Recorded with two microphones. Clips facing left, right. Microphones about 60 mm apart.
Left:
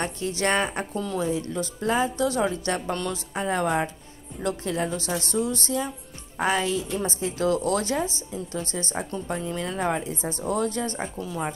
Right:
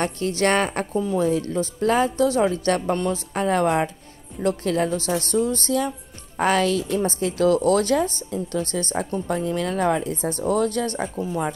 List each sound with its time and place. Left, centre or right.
0.0 s a woman's voice: right
0.9 s speech: centre
1.8 s speech: right
2.1 s a woman's voice: right
2.5 s a woman's voice: right
2.9 s a woman's voice: right
3.3 s speech: right
4.9 s a woman's voice: right
7.4 s a woman's voice: right
7.9 s speech: right
8.5 s a woman's voice: right
9.3 s speech: right
11.1 s a woman's voice: right